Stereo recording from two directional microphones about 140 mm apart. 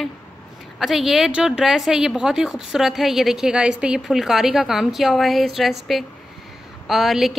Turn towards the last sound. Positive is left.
turn(degrees=0)  # may be behind; listen again after turning